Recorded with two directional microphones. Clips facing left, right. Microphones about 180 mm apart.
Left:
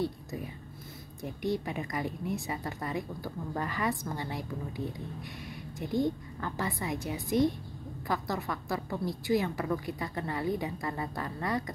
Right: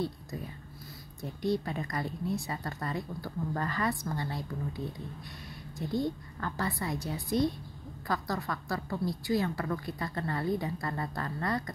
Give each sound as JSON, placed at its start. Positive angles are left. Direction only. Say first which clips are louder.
{"t": 1.2, "sound": "a woman's voice", "louder": "right 1 dB", "side_deg": 15}